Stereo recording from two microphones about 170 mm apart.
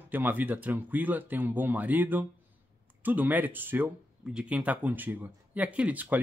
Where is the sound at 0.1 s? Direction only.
10° right (ahead or behind).